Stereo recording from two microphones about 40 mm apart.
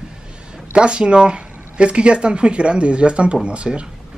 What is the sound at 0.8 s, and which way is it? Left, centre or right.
Speech, right.